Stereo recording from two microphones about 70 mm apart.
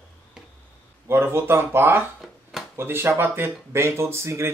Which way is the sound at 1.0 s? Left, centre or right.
Right.